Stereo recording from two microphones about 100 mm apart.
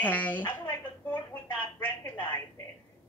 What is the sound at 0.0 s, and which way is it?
Speech, 15° left (ahead or behind).